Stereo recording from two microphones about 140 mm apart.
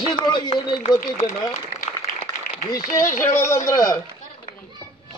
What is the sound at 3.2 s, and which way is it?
Speech, 20° left (ahead or behind).